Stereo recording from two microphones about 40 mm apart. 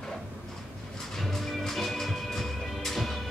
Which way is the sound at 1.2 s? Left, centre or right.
Centre.